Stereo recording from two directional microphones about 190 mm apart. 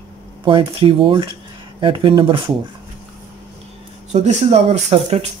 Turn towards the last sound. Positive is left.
turn(degrees=-35)  # may be behind; listen again after turning